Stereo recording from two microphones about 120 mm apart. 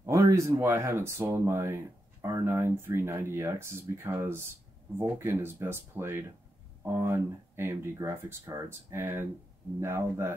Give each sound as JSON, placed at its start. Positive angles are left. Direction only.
{"t": 0.0, "sound": "speech", "side_deg": -25}